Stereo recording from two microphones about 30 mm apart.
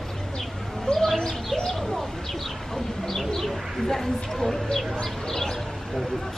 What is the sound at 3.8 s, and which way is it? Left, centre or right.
Speech, centre.